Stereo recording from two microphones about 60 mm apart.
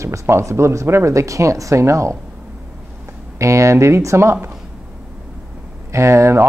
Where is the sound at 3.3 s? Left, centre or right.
Right.